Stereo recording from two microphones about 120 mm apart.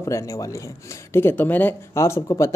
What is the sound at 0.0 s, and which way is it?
Speech, 25° left (ahead or behind).